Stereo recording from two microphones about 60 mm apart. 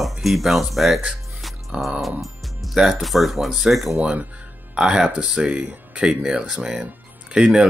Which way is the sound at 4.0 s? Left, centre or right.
Centre.